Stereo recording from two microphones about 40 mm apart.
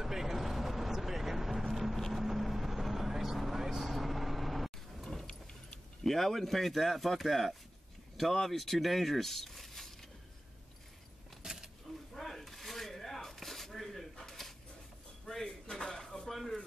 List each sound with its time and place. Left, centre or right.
0.0 s vehicle: centre
6.0 s speech: centre
11.4 s keys jangling: centre
12.1 s a sound: centre
15.6 s dishes: left
15.9 s dishes: centre